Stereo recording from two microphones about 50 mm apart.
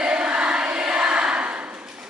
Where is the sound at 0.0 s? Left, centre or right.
Centre.